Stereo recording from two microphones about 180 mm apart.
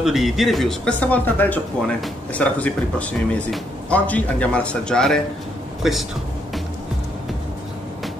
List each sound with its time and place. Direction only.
0.0 s speech: centre (ahead or behind)